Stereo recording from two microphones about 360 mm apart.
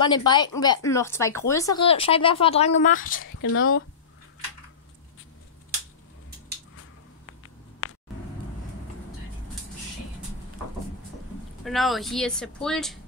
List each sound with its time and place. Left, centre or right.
0.0 s speech: centre
3.3 s speech: left
7.2 s a sound: left
11.6 s speech: centre